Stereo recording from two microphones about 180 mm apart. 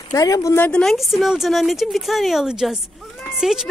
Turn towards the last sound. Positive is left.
turn(degrees=-5)  # may be behind; listen again after turning